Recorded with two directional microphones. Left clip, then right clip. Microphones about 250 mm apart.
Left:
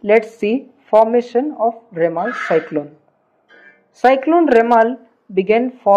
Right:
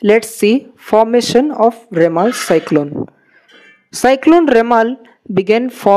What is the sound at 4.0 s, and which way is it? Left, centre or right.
Speech, right.